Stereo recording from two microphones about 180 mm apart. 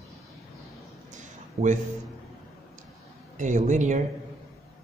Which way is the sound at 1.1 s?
45° right (ahead or behind).